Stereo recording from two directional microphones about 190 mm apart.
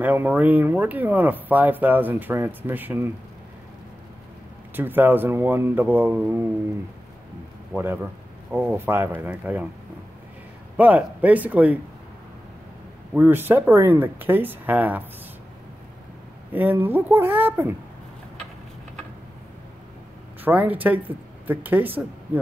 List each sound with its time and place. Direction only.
0.0 s speech: 10° right (ahead or behind)
4.7 s speech: 10° right (ahead or behind)
7.7 s speech: 10° right (ahead or behind)
10.8 s speech: 10° right (ahead or behind)
13.1 s speech: 10° right (ahead or behind)
16.5 s speech: 10° right (ahead or behind)
20.4 s speech: 10° right (ahead or behind)